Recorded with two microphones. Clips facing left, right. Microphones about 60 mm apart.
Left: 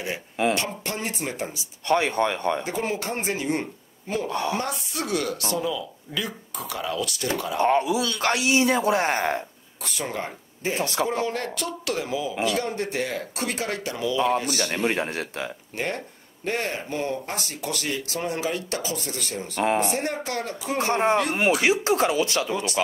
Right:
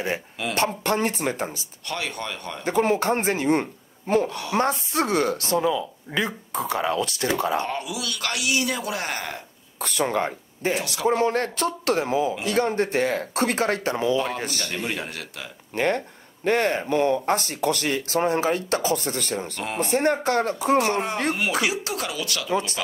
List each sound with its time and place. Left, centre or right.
0.6 s speech: right
1.9 s speech: left
2.6 s speech: right
4.3 s speech: left
4.6 s speech: right
7.6 s speech: left
9.8 s speech: right
10.7 s speech: left
11.1 s speech: right
14.5 s speech: left
15.7 s speech: right
19.5 s speech: left
19.8 s speech: right
20.8 s speech: left